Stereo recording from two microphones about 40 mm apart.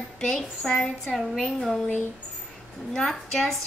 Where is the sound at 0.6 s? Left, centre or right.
Centre.